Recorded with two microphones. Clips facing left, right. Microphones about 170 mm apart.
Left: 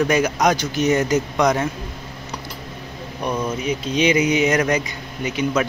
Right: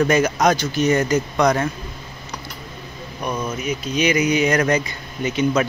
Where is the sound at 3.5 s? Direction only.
30° left (ahead or behind).